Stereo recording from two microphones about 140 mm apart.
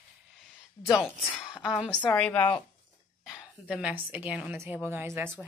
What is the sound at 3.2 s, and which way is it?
A woman's voice, 5° right (ahead or behind).